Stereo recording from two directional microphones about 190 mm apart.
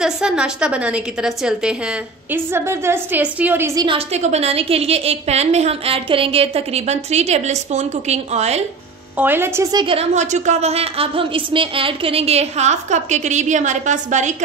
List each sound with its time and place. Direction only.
0.0 s a woman's voice: 5° right (ahead or behind)
3.8 s a woman's voice: 30° right (ahead or behind)
9.2 s a woman's voice: 10° right (ahead or behind); by 14.3 s 40° right (ahead or behind)